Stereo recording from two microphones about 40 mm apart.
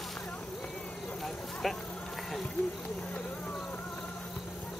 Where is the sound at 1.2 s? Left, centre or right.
Centre.